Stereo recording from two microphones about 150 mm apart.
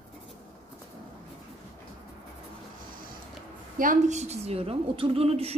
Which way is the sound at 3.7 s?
55° right (ahead or behind).